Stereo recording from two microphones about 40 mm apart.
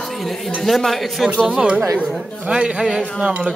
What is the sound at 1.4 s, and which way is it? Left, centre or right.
Speech, right.